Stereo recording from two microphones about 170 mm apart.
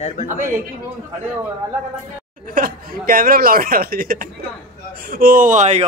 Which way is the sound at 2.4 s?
55° right (ahead or behind).